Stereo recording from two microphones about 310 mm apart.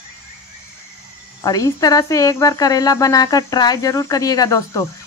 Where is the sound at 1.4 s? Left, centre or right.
Centre.